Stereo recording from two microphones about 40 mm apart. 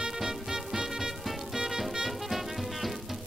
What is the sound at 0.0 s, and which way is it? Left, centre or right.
Music, centre.